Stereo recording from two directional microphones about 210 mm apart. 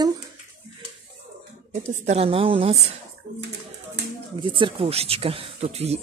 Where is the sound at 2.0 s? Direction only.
30° right (ahead or behind).